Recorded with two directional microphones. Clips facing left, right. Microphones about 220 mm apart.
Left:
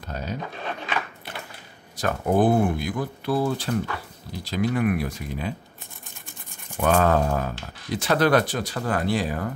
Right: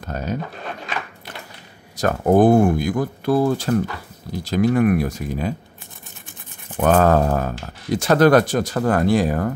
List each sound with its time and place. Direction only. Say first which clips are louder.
0.0 s a sound: right 6 dB; 50° right (ahead or behind)
2.0 s speech: right 6 dB; 45° right (ahead or behind)
6.8 s speech: right 5 dB; 45° right (ahead or behind)